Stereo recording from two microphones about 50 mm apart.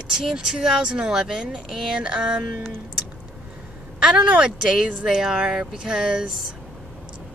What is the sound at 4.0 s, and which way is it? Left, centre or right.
Speech, centre.